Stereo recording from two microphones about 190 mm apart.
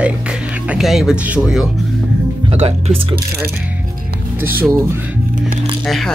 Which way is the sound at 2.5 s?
30° right (ahead or behind).